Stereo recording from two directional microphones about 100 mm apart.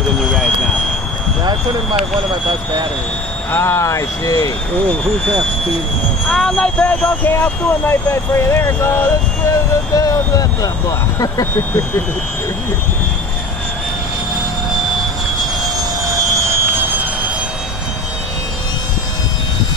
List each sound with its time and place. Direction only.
0.2 s jet engine: 5° left (ahead or behind)
3.5 s speech: 25° left (ahead or behind)
6.2 s speech: 5° left (ahead or behind); by 9.6 s 25° left (ahead or behind)
9.9 s speech: 35° left (ahead or behind)
16.4 s vehicle: 20° right (ahead or behind)